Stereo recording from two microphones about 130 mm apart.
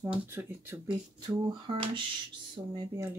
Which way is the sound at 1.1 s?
30° right (ahead or behind).